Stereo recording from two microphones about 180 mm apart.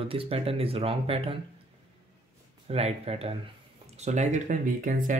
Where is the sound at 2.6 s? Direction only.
35° right (ahead or behind).